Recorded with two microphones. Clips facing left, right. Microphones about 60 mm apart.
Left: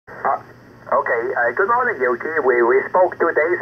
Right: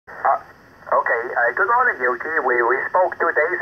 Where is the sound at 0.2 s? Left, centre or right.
Centre.